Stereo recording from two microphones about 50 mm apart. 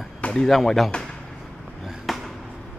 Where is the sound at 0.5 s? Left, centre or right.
Centre.